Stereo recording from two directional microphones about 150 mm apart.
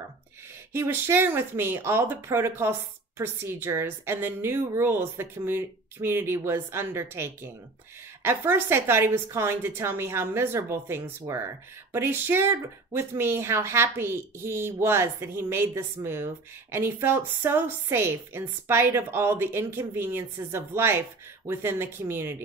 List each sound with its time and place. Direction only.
0.7 s a woman's voice: 15° right (ahead or behind)